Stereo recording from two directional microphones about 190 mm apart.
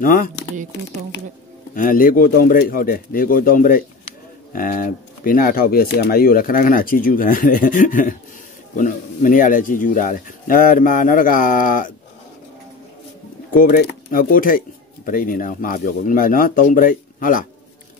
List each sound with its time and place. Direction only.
0.0 s speech: 45° left (ahead or behind)
1.8 s speech: 45° left (ahead or behind)
13.5 s speech: 50° left (ahead or behind)